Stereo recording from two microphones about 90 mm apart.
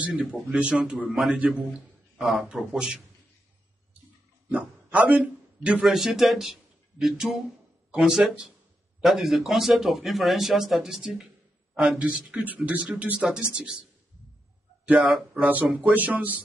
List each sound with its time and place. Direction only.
0.0 s a man's voice: 10° right (ahead or behind)
4.9 s a man's voice: 15° right (ahead or behind)
5.9 s a man's voice: centre (ahead or behind)
14.9 s a man's voice: 15° right (ahead or behind)